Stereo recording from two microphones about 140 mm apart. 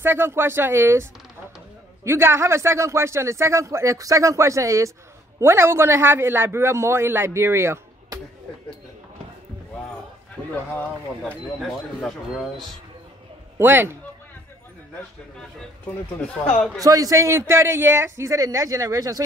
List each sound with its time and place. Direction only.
0.0 s speech: 15° right (ahead or behind)
2.0 s a man's voice: 20° right (ahead or behind)
10.5 s speech: 15° left (ahead or behind)
11.6 s speech: centre (ahead or behind)
13.6 s speech: 15° right (ahead or behind)
16.7 s a man's voice: 25° right (ahead or behind)